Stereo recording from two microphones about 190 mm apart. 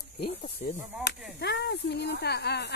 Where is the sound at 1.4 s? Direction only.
60° left (ahead or behind).